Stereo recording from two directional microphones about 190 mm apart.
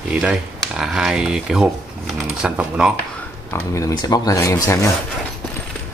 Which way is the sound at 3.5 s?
15° left (ahead or behind).